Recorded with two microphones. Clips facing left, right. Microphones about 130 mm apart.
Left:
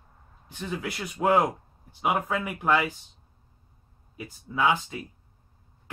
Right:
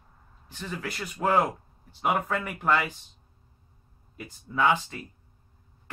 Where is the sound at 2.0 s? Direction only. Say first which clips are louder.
Even; 5° left (ahead or behind).